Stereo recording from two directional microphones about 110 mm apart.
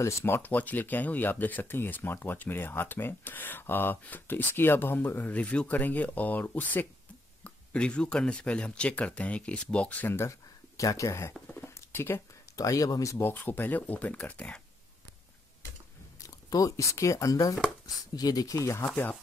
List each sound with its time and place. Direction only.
0.0 s speech: 20° left (ahead or behind)
13.3 s speech: 15° left (ahead or behind)
16.2 s speech: 30° left (ahead or behind)